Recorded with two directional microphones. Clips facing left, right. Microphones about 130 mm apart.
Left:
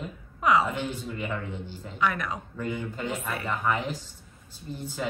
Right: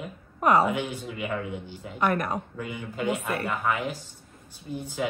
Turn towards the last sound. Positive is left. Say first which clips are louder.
# right 4 dB
turn(degrees=-10)  # may be behind; listen again after turning